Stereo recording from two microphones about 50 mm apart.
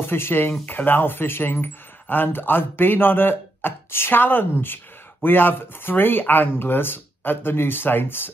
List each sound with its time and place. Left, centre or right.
0.0 s speech: left